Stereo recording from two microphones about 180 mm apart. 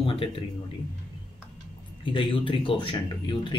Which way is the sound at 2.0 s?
30° left (ahead or behind).